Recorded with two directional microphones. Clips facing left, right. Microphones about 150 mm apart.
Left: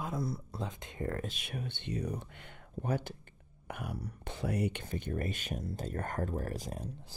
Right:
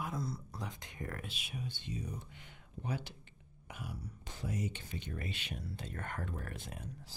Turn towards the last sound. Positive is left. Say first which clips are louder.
# left 8 dB
turn(degrees=35)  # may be behind; listen again after turning